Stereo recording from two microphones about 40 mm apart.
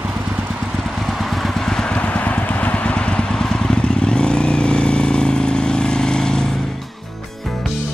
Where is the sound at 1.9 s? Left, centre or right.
Left.